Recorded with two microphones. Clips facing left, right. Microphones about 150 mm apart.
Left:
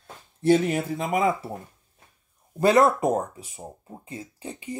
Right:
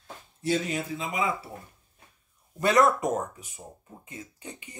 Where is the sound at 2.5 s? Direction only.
30° left (ahead or behind).